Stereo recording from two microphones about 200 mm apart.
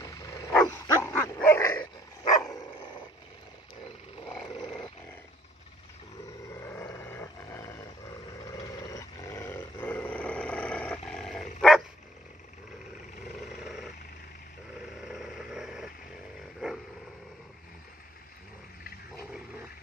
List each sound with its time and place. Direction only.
0.0 s bow-wow: 15° left (ahead or behind)
0.6 s dog: 10° left (ahead or behind)
4.3 s a sound: 25° left (ahead or behind)
6.5 s roar: 15° left (ahead or behind)
13.5 s a sound: centre (ahead or behind)
15.0 s vehicle: 5° right (ahead or behind)